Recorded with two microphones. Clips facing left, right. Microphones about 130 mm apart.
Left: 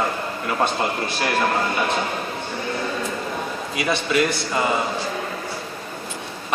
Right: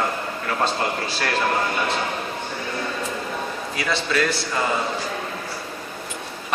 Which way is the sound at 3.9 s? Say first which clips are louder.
Left 2 dB; 15° left (ahead or behind).